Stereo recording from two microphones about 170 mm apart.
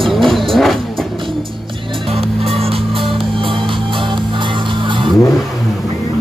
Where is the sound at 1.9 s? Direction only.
30° right (ahead or behind).